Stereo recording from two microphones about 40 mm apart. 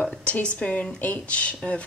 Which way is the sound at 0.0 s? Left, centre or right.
Left.